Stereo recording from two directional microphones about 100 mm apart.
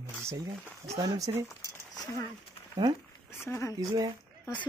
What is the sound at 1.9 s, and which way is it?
Speech, 40° left (ahead or behind).